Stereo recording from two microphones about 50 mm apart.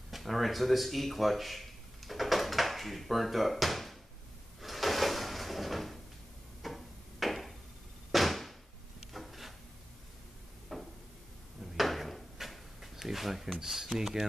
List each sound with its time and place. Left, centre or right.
0.1 s speech: centre
4.6 s drawer open or close: centre
6.6 s a sound: centre
9.1 s drawer open or close: centre
10.7 s a sound: centre
11.7 s drawer open or close: centre